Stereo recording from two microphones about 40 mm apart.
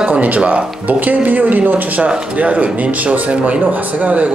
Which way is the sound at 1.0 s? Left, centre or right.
Right.